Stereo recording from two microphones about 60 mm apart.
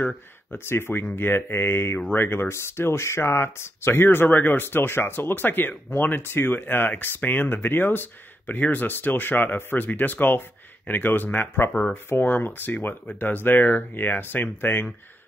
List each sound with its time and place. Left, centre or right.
0.5 s speech: left
11.7 s speech: centre
12.1 s speech: left